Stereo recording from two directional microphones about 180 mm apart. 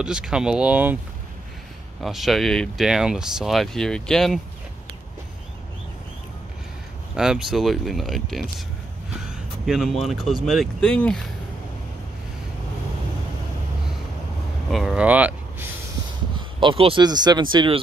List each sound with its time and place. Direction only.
0.0 s speech: 5° right (ahead or behind)
2.0 s speech: centre (ahead or behind)
7.2 s speech: 5° right (ahead or behind)
9.7 s speech: centre (ahead or behind)
14.7 s vehicle: centre (ahead or behind)
16.3 s speech: 30° right (ahead or behind)